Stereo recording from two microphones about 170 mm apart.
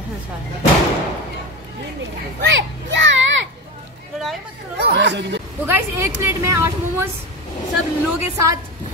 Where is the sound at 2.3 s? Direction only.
90° right.